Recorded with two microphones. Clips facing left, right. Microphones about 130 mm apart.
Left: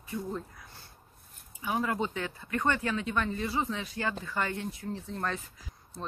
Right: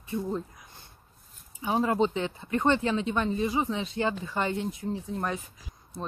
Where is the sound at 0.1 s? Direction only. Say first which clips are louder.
Right 5 dB; 20° right (ahead or behind).